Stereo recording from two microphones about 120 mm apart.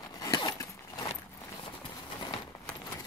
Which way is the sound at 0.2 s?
35° left (ahead or behind).